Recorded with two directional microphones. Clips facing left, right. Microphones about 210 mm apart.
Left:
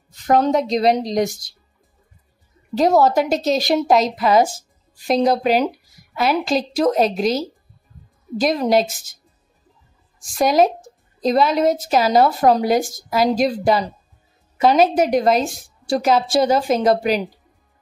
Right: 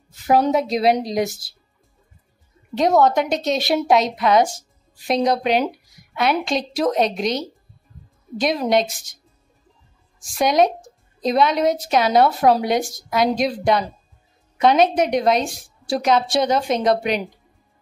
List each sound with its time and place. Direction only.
0.3 s a woman's voice: 5° right (ahead or behind)
2.7 s a woman's voice: centre (ahead or behind)
10.2 s a woman's voice: centre (ahead or behind)